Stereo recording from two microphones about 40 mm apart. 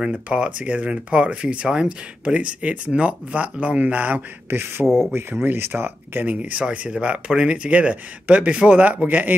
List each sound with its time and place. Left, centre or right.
0.0 s speech: right
4.5 s speech: right
5.4 s speech: right
6.2 s speech: right